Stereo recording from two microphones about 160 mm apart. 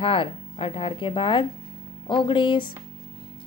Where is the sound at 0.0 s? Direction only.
35° left (ahead or behind).